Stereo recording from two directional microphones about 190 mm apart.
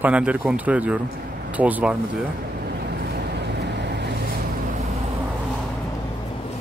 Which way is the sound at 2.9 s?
60° right (ahead or behind).